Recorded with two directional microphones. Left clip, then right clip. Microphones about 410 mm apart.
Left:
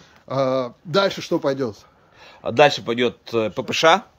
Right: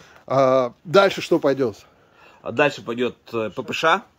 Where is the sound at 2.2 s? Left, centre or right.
Left.